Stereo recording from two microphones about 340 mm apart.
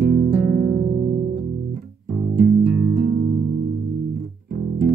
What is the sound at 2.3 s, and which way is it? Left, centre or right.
Music, right.